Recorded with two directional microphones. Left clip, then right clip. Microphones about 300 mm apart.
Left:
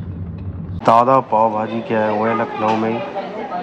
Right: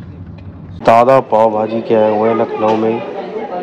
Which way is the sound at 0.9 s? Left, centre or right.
Left.